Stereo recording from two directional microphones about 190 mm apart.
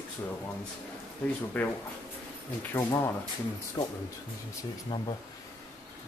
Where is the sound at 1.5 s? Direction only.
10° left (ahead or behind).